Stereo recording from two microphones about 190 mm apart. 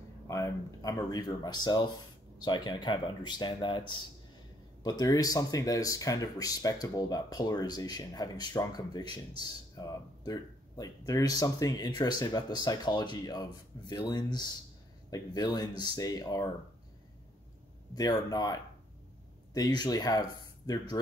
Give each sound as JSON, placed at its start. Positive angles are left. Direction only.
{"t": 0.3, "sound": "speech", "side_deg": 15}
{"t": 17.9, "sound": "speech", "side_deg": 20}